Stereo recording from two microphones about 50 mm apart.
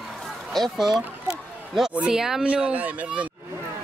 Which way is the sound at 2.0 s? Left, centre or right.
Centre.